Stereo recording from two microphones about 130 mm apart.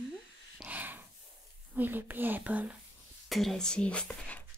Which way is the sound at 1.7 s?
15° right (ahead or behind).